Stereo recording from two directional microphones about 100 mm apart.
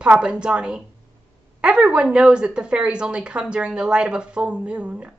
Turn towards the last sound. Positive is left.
turn(degrees=-10)  # may be behind; listen again after turning